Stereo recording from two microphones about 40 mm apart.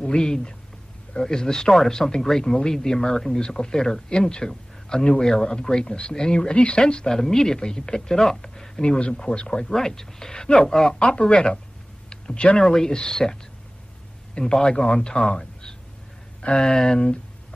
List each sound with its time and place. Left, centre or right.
0.0 s speech: centre
9.7 s speech: centre
12.1 s a sound: centre
12.5 s a man's voice: centre